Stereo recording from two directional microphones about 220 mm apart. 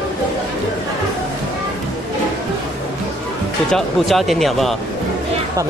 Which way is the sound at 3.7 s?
Centre (ahead or behind).